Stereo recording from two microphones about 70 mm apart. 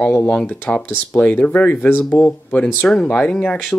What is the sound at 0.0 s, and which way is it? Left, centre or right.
Speech, centre.